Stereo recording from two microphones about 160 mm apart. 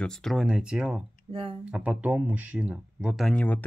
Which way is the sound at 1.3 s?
35° right (ahead or behind).